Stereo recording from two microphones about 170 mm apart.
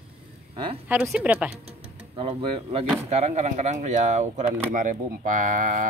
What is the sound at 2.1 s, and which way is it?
Speech, 35° right (ahead or behind).